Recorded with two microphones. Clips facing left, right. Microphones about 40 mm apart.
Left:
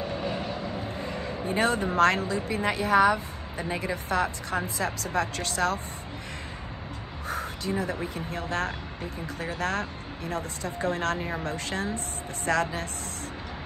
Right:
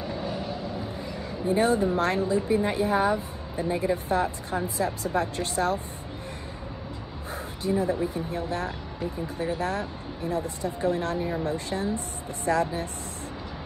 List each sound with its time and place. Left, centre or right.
0.2 s a sound: left
0.8 s a woman's voice: left
7.2 s a woman's voice: left
11.1 s speech: left
11.4 s a woman's voice: left